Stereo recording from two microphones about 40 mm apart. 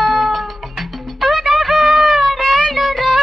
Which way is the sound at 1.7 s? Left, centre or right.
Centre.